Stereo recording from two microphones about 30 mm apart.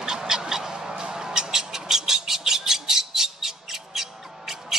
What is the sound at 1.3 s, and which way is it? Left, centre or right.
Squawk, centre.